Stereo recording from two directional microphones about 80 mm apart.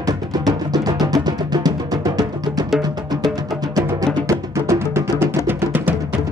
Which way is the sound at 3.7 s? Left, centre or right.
Right.